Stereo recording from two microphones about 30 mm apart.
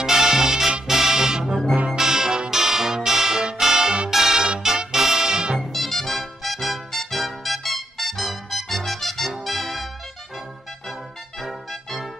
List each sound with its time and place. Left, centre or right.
0.0 s music: centre
5.6 s music: centre
11.4 s music: centre